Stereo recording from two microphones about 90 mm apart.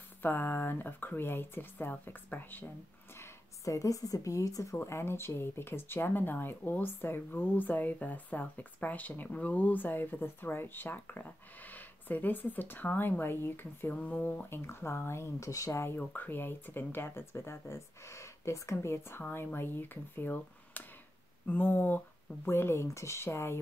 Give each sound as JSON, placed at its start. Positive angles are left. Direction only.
{"t": 0.2, "sound": "speech", "side_deg": 20}
{"t": 3.2, "sound": "speech", "side_deg": 35}
{"t": 16.0, "sound": "speech", "side_deg": 20}